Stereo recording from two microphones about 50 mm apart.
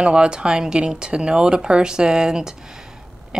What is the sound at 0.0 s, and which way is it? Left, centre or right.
A woman's voice, centre.